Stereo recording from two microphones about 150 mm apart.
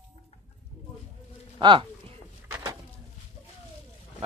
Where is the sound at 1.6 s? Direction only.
30° right (ahead or behind).